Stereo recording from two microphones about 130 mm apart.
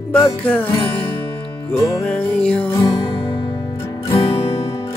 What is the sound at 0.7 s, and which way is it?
Music, 45° left (ahead or behind).